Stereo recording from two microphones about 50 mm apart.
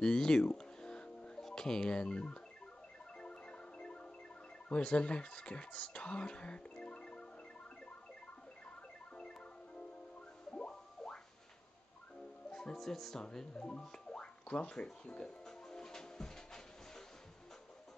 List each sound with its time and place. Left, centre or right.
0.0 s music: centre
1.4 s speech: centre
3.2 s music: centre
4.6 s speech: left
10.5 s a sound: centre
12.4 s music: centre
12.7 s music: centre